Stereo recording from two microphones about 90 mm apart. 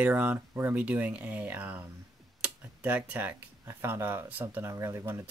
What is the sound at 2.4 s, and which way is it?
Tick-tock, 15° right (ahead or behind).